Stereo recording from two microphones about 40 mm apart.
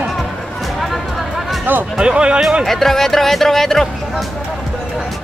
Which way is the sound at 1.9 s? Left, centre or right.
Right.